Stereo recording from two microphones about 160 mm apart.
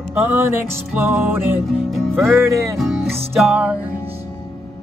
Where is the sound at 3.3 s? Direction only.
5° right (ahead or behind).